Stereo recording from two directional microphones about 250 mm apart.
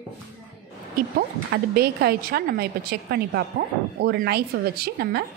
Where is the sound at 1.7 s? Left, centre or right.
Right.